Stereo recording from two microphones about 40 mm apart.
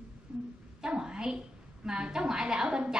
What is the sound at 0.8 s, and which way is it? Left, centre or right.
A woman's voice, right.